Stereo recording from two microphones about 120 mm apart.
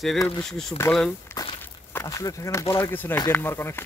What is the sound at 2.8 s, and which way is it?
Speech, 15° left (ahead or behind).